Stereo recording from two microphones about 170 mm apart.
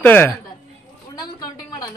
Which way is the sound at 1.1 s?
25° left (ahead or behind).